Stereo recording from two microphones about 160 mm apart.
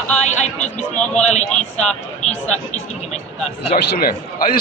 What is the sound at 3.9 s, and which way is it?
Speech, 70° left (ahead or behind).